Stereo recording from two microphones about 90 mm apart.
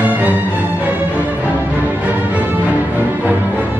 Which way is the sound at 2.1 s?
15° right (ahead or behind).